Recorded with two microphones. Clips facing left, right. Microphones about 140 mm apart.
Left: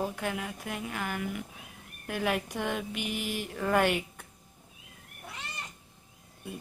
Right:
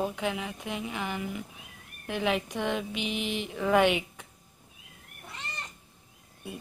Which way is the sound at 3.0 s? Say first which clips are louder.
Right 2 dB; 70° right (ahead or behind).